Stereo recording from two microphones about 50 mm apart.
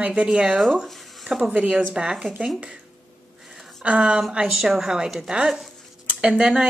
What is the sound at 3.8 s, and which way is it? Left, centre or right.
Speech, right.